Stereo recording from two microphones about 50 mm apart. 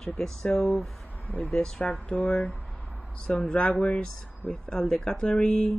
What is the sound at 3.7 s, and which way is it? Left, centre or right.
Speech, left.